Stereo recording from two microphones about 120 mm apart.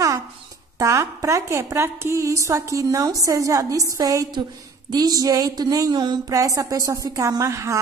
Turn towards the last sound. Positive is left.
turn(degrees=-25)  # may be behind; listen again after turning